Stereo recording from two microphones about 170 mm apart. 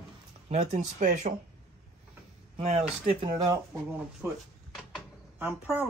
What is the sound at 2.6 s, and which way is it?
Speech, 35° right (ahead or behind).